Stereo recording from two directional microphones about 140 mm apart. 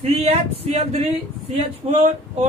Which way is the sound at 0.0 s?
50° right (ahead or behind).